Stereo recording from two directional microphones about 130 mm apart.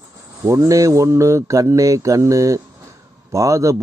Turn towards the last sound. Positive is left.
turn(degrees=-25)  # may be behind; listen again after turning